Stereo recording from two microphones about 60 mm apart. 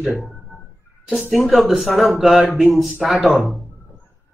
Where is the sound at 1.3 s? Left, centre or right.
Centre.